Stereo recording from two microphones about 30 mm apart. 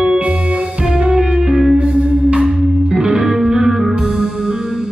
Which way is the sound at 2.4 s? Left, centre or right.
Centre.